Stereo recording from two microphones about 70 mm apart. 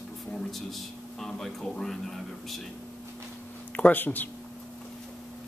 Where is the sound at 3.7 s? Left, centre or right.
Left.